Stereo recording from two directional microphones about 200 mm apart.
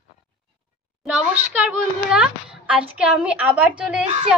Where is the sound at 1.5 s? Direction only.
5° right (ahead or behind).